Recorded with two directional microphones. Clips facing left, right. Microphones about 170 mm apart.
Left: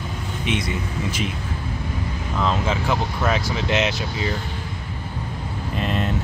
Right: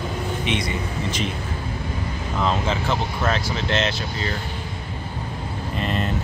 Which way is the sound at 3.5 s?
10° left (ahead or behind).